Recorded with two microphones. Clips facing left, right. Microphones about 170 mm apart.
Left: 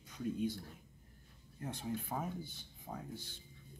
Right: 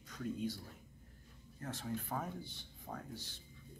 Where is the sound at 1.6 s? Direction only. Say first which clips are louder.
Left 1 dB; 15° left (ahead or behind).